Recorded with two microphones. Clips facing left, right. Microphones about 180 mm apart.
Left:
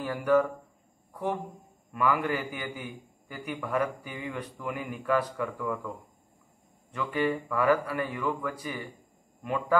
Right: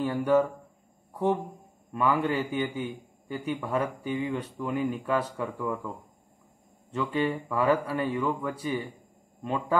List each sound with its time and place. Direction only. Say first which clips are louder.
0.0 s a man's voice: right 1 dB; 25° right (ahead or behind)
2.0 s a man's voice: right 2 dB; 25° right (ahead or behind)
6.9 s a man's voice: right 1 dB; 25° right (ahead or behind)